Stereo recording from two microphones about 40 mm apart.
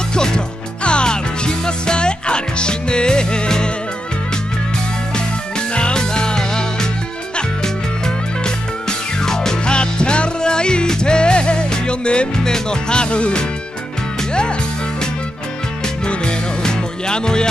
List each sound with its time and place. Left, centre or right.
0.1 s music: centre
5.8 s music: left
8.5 s music: centre
16.1 s music: left